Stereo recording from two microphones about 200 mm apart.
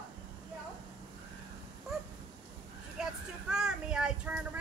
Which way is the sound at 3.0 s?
5° right (ahead or behind).